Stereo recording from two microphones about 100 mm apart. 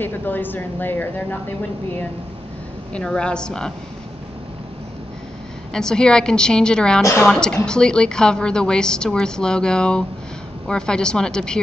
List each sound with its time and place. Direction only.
0.0 s speech: 20° left (ahead or behind)
2.9 s a woman's voice: 10° left (ahead or behind)
5.7 s a woman's voice: 5° left (ahead or behind)